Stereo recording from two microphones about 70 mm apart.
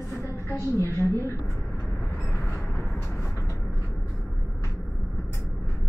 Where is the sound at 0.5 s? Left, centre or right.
Left.